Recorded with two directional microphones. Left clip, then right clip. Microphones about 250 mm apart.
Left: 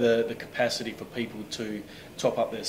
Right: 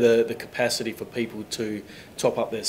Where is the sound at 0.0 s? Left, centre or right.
Right.